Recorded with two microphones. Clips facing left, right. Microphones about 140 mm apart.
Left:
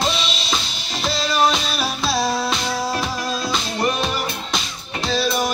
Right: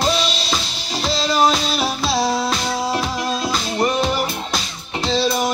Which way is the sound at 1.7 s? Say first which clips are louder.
Right 2 dB; 25° right (ahead or behind).